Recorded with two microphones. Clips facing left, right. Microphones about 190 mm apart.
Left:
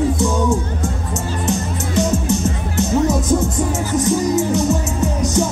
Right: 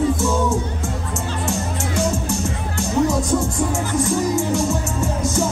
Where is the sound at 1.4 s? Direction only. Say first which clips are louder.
Left 4 dB; 20° left (ahead or behind).